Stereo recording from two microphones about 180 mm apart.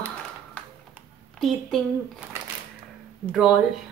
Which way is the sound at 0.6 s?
5° left (ahead or behind).